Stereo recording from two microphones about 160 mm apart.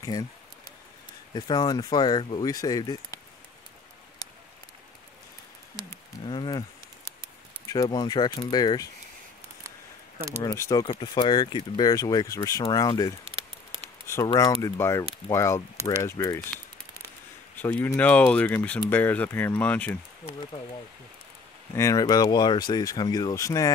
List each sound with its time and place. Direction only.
0.0 s a sound: 25° left (ahead or behind)
1.3 s speech: 25° left (ahead or behind)
6.2 s a sound: 30° left (ahead or behind)
7.6 s speech: 20° left (ahead or behind)
10.4 s speech: 20° left (ahead or behind)
10.9 s speech: 35° left (ahead or behind); by 16.3 s 15° left (ahead or behind)
17.6 s speech: 10° left (ahead or behind)
21.7 s speech: 20° left (ahead or behind)